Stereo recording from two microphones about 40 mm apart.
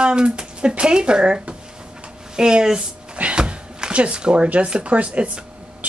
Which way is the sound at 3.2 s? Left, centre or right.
Right.